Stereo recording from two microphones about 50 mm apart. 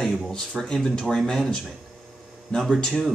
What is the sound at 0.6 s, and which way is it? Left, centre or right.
Speech, centre.